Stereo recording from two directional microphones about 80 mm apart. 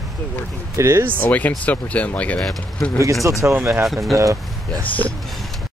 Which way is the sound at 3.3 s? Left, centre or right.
Right.